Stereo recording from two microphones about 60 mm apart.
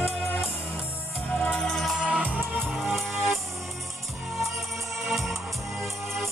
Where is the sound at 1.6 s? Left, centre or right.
Centre.